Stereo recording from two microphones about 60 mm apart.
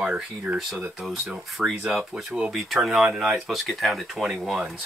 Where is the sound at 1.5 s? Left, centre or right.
Centre.